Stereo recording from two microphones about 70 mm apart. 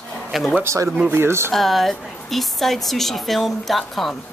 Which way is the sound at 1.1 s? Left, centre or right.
Right.